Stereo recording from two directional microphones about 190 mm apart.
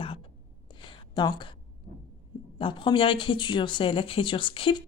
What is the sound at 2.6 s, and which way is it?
A woman's voice, 25° left (ahead or behind).